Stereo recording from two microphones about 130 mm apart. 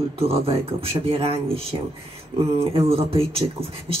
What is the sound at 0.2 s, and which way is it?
A woman's voice, 50° right (ahead or behind).